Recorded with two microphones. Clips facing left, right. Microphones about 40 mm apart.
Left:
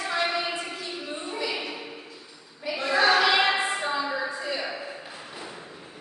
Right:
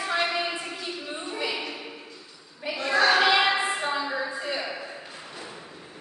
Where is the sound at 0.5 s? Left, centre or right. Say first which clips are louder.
Even; centre.